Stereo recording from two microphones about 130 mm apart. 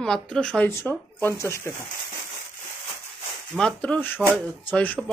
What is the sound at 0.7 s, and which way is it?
Speech, 20° left (ahead or behind).